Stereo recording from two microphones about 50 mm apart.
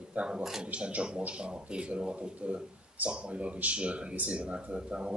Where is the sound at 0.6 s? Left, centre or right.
Right.